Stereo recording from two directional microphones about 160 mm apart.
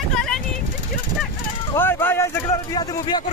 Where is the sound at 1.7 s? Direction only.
15° left (ahead or behind).